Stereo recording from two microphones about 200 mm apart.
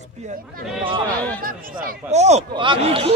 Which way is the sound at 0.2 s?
35° right (ahead or behind).